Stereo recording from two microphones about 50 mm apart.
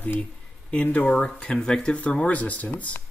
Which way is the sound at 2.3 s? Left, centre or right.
Left.